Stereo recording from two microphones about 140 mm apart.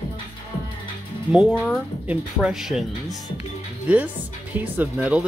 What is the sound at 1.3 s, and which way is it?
Speech, 5° right (ahead or behind).